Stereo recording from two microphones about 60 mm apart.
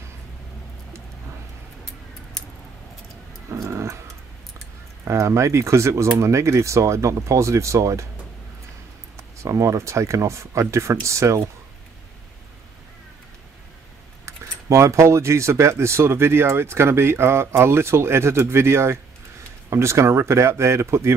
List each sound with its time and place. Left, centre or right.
3.5 s dog: right
5.0 s speech: right
9.1 s speech: right
14.2 s speech: right